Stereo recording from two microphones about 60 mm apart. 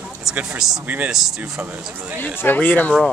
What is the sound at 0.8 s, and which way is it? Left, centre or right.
Speech, right.